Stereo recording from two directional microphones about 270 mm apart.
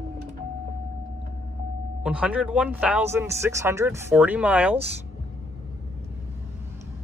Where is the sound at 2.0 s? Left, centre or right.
Centre.